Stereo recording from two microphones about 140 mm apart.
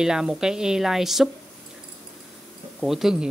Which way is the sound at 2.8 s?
Centre (ahead or behind).